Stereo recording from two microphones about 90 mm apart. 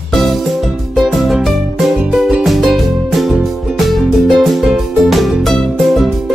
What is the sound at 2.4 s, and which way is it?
Music, centre (ahead or behind).